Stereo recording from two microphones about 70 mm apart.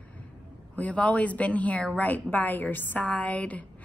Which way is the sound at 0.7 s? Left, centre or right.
Centre.